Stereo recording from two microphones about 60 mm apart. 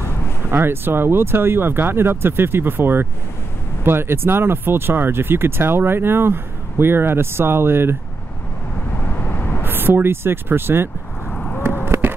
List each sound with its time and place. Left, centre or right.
0.5 s speech: right
9.0 s vehicle: left
9.6 s speech: right
11.8 s a sound: right